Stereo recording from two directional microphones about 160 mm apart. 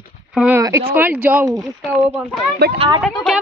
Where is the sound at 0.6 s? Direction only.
20° right (ahead or behind).